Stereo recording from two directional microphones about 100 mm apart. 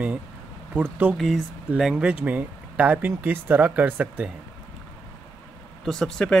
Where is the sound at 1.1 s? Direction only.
Centre (ahead or behind).